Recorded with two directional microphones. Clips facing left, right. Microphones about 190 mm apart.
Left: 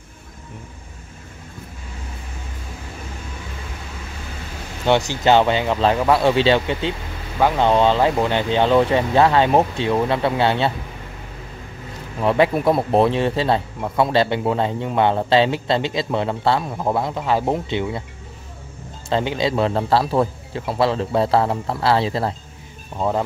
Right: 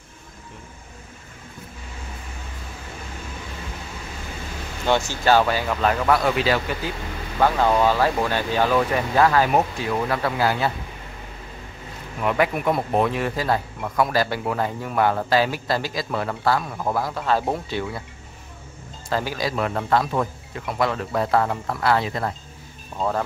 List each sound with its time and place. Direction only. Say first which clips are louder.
4.8 s speech: left 3 dB; 15° left (ahead or behind)
12.2 s speech: left 5 dB; 30° left (ahead or behind)
19.0 s speech: left 5 dB; 25° left (ahead or behind)
22.9 s speech: left 3 dB; 15° left (ahead or behind)